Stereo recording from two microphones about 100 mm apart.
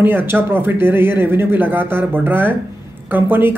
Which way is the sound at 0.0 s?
20° right (ahead or behind).